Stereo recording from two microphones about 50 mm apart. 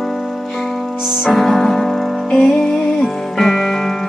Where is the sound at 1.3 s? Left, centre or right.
Centre.